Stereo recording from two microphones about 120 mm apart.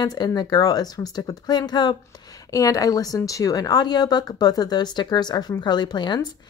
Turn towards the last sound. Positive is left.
turn(degrees=35)  # may be behind; listen again after turning